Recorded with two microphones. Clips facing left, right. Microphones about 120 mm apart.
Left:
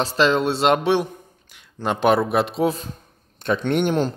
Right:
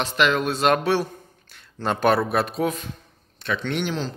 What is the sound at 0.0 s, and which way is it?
A man's voice, 35° left (ahead or behind).